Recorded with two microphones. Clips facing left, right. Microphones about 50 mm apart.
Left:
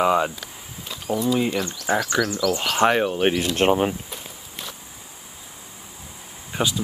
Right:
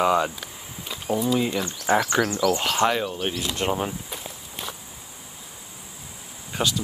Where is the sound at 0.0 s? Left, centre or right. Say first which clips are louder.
Left 1 dB; centre.